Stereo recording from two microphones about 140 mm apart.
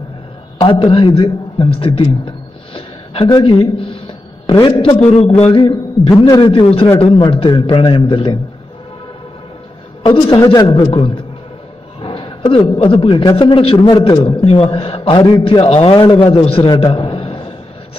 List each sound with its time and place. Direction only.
0.6 s a man's voice: 40° left (ahead or behind)
5.4 s a sound: 45° left (ahead or behind)
5.7 s a man's voice: 25° left (ahead or behind)
6.4 s a man's voice: 40° left (ahead or behind)
10.4 s a man's voice: 25° left (ahead or behind)
10.7 s a man's voice: 40° left (ahead or behind)